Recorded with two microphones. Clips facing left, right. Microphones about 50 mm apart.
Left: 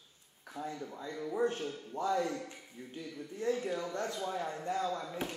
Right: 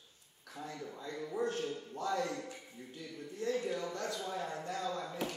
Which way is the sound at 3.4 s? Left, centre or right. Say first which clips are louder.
Left 2 dB; left.